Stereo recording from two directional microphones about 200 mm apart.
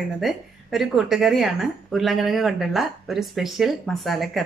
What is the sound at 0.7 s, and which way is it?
A woman's voice, centre (ahead or behind).